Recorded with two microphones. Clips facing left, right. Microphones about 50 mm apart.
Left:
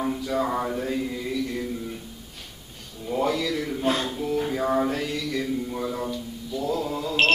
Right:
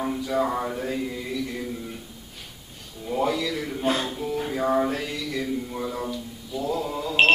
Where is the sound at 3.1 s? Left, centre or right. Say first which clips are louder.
Even; centre.